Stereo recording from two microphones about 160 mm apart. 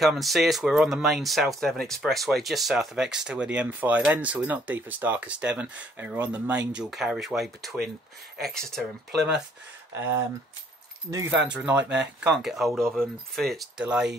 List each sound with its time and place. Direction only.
0.0 s speech: centre (ahead or behind)
11.1 s speech: 20° right (ahead or behind)
11.4 s speech: 10° right (ahead or behind)